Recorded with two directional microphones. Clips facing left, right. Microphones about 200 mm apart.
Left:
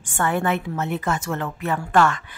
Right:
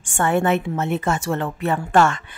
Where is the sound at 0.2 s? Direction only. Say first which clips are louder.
Right 4 dB; 25° right (ahead or behind).